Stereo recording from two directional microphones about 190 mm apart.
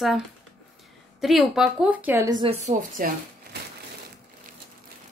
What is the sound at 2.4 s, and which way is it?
Speech, 40° right (ahead or behind).